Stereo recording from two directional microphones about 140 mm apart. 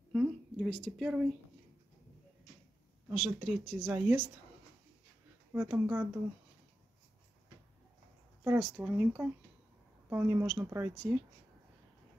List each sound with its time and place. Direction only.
0.1 s a sound: 5° right (ahead or behind)
0.7 s speech: centre (ahead or behind)
3.2 s speech: centre (ahead or behind)
5.5 s speech: 15° right (ahead or behind)
8.5 s speech: 10° right (ahead or behind)